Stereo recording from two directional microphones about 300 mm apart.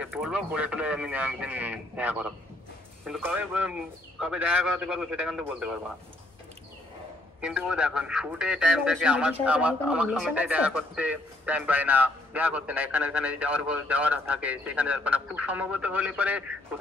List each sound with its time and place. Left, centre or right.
0.0 s speech: centre
7.4 s speech: centre